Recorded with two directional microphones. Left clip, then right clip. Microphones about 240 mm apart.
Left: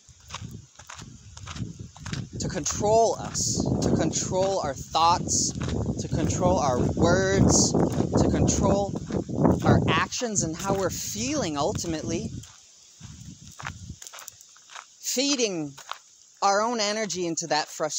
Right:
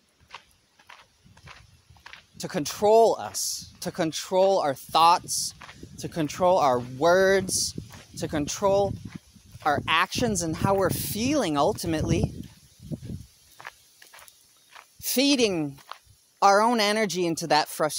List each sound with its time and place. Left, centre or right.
0.3 s a sound: left
2.4 s speech: right
5.6 s speech: left
5.9 s speech: right
13.6 s horse: left
15.0 s speech: right